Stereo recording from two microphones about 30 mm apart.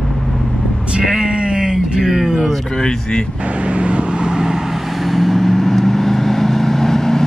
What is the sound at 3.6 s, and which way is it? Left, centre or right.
Vehicle, right.